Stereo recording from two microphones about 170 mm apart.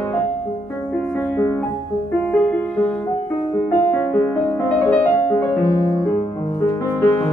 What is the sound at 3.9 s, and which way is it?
Music, 15° left (ahead or behind).